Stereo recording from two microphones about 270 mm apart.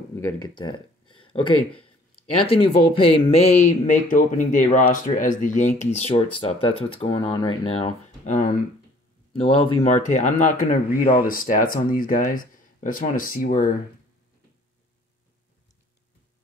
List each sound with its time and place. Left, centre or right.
0.1 s speech: centre
1.1 s a sound: centre
2.4 s speech: centre